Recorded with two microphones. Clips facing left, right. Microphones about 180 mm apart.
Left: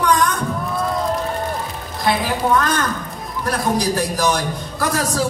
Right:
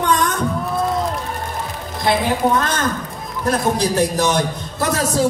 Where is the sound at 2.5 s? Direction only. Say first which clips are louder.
Even; 25° right (ahead or behind).